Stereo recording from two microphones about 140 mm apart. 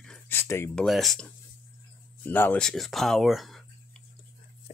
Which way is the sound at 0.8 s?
Centre (ahead or behind).